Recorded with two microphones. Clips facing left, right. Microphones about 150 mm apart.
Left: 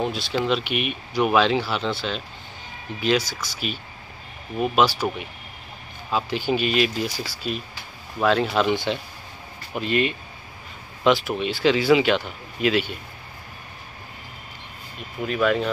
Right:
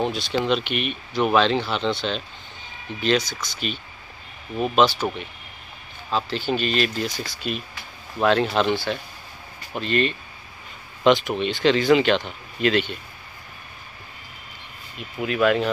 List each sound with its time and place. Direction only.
0.0 s speech: centre (ahead or behind)
6.0 s speech: 10° left (ahead or behind)
8.7 s speech: 20° left (ahead or behind)
15.2 s speech: centre (ahead or behind)